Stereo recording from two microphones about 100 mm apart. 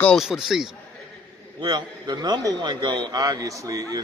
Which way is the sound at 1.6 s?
45° right (ahead or behind).